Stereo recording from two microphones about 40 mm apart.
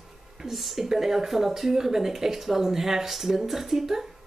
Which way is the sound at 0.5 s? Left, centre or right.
Centre.